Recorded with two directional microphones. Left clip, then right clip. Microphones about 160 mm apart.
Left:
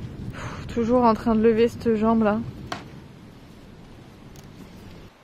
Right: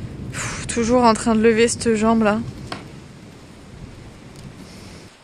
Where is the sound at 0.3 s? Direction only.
Centre (ahead or behind).